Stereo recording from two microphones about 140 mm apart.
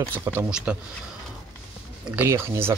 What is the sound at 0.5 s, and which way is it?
Speech, 5° right (ahead or behind).